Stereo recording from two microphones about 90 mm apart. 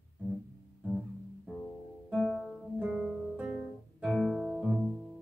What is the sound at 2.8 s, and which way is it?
Guitar, 10° right (ahead or behind).